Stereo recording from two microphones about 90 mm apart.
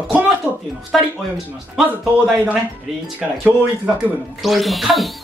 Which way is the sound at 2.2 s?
10° right (ahead or behind).